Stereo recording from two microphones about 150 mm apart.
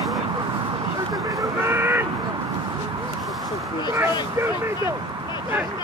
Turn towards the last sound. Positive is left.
turn(degrees=-15)  # may be behind; listen again after turning